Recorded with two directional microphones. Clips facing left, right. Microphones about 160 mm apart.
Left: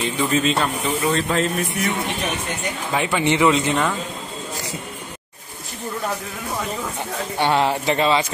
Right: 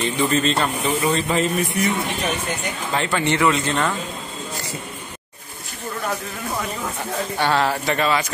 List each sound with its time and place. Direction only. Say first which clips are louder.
0.0 s speech: even; 5° left (ahead or behind)
7.3 s speech: left 2 dB; 20° left (ahead or behind)